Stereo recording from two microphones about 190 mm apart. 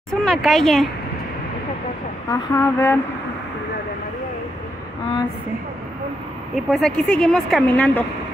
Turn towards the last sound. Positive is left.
turn(degrees=5)  # may be behind; listen again after turning